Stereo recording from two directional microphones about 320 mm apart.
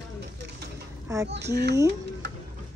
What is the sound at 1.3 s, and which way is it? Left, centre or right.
Speech, right.